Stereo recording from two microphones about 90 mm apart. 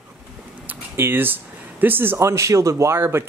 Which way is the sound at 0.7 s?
25° right (ahead or behind).